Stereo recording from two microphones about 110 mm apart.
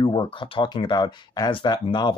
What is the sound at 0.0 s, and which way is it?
Speech, 50° left (ahead or behind).